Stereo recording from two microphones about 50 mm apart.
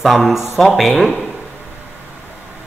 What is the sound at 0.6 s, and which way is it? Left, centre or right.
Speech, centre.